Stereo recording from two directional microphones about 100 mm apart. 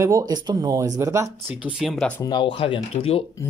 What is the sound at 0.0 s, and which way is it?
Speech, 30° right (ahead or behind).